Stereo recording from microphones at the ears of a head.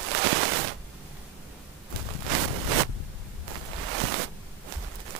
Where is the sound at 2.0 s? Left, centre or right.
Right.